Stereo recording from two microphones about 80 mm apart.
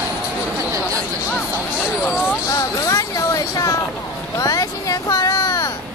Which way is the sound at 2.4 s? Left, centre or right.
Left.